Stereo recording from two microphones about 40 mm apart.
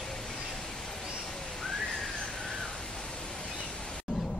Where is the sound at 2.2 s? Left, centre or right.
Centre.